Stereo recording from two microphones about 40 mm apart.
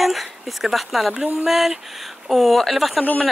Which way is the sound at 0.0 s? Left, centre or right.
Centre.